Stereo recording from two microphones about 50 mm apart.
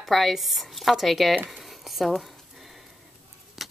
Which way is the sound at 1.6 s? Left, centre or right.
Centre.